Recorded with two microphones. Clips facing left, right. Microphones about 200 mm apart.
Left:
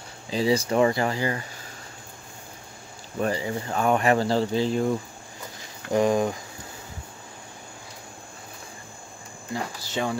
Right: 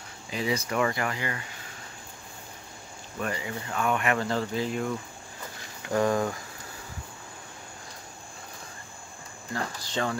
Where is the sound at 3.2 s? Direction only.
30° left (ahead or behind).